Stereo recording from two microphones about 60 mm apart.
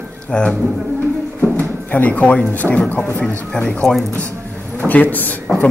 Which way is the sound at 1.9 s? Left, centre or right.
Left.